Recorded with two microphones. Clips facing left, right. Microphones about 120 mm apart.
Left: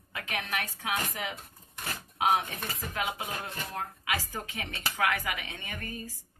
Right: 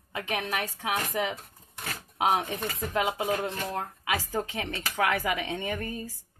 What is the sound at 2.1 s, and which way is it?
Speech, 30° right (ahead or behind).